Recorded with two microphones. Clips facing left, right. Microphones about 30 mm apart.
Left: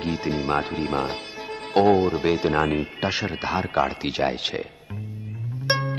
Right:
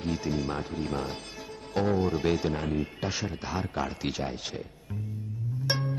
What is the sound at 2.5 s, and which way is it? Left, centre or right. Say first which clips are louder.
Speech: left 9 dB; left.